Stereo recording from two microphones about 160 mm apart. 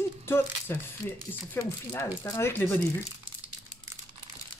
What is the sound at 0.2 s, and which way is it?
Speech, 15° left (ahead or behind).